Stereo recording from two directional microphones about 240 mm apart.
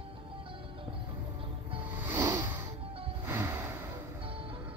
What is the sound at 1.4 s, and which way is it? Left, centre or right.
Music, right.